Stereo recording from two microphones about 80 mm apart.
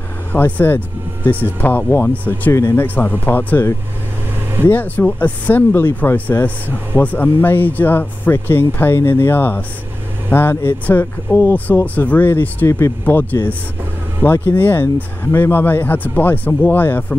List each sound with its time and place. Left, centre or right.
0.3 s speech: left
2.5 s speech: left
4.6 s speech: left
13.0 s speech: left